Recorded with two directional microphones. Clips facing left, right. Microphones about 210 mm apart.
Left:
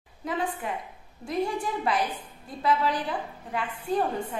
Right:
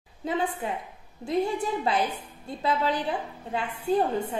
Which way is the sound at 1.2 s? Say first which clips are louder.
Right 2 dB; 25° right (ahead or behind).